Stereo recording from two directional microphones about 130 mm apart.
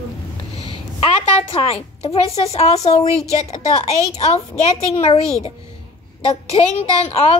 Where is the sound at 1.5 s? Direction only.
50° left (ahead or behind).